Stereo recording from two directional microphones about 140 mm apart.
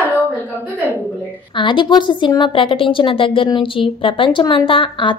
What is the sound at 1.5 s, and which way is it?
A woman's voice, 35° left (ahead or behind).